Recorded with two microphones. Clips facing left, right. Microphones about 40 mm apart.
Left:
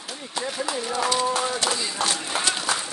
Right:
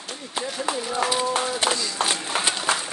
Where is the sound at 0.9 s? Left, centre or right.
Centre.